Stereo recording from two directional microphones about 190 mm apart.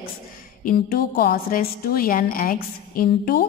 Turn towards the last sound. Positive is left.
turn(degrees=50)  # may be behind; listen again after turning